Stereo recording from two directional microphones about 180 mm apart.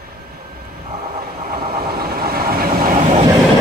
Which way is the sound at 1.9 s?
55° right (ahead or behind).